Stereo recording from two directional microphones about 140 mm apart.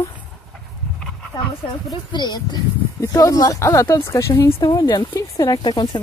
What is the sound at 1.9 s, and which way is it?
Speech, 30° left (ahead or behind).